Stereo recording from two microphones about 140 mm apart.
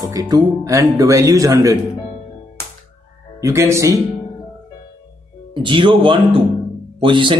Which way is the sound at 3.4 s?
20° right (ahead or behind).